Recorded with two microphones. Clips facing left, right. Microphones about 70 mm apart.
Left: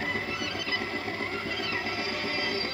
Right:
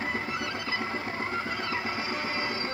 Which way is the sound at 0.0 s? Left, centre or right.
Right.